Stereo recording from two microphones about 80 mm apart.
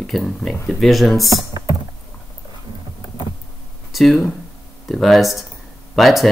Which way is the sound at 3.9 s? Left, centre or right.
Centre.